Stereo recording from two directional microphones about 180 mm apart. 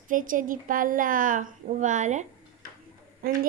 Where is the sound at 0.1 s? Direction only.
50° right (ahead or behind).